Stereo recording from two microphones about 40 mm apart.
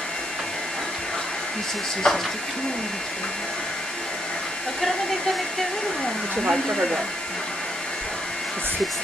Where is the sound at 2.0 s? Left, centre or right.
Centre.